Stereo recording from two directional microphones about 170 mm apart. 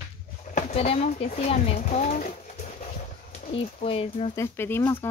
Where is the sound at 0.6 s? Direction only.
45° left (ahead or behind).